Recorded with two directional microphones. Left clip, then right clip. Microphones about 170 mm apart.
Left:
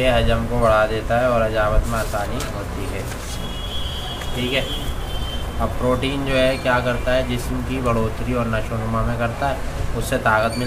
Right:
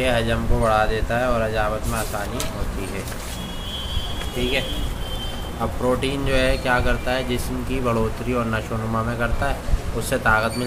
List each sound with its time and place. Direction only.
0.0 s speech: 20° right (ahead or behind)
5.9 s speech: 20° right (ahead or behind)